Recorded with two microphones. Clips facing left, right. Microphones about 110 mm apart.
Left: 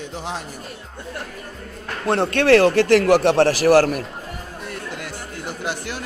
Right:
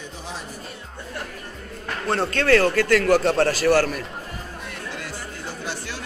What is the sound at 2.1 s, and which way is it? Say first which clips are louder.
Speech: left 4 dB; 60° left (ahead or behind).